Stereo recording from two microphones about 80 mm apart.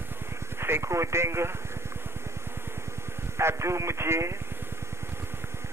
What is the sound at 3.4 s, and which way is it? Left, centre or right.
Speech, right.